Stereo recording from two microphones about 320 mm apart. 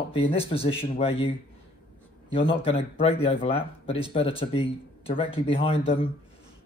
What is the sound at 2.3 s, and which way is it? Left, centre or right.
Speech, centre.